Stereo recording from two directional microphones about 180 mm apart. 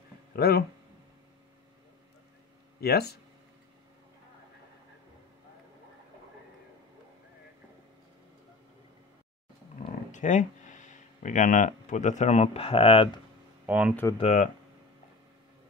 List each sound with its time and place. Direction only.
0.3 s speech: 60° left (ahead or behind)
2.8 s speech: 60° left (ahead or behind)
10.1 s speech: 45° left (ahead or behind)
13.7 s speech: 5° right (ahead or behind)
14.1 s speech: 40° left (ahead or behind)